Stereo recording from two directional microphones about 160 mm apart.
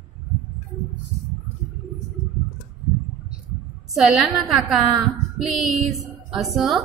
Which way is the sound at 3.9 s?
Centre (ahead or behind).